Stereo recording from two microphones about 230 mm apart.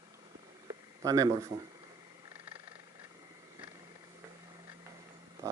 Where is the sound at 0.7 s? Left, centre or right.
Centre.